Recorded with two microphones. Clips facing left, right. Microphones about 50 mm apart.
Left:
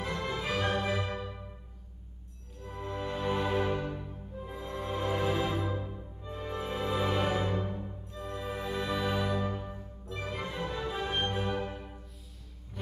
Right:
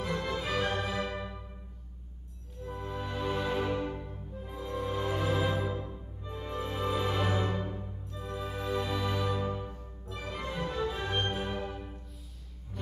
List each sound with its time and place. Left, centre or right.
0.3 s music: centre
2.6 s music: centre
8.5 s music: centre
11.5 s music: left